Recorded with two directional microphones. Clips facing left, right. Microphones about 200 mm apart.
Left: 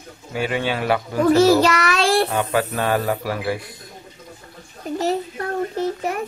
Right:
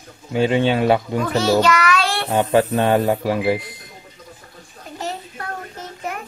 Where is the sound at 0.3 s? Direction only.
25° right (ahead or behind).